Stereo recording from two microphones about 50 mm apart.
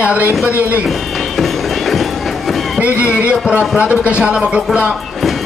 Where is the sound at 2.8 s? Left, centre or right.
Right.